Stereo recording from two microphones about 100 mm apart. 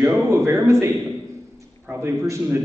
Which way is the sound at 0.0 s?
25° right (ahead or behind).